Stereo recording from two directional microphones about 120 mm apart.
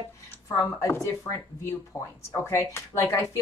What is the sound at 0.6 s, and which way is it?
Speech, 25° left (ahead or behind).